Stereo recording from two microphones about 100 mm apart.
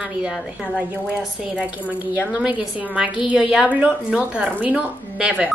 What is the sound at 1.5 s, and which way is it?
A woman's voice, 10° right (ahead or behind).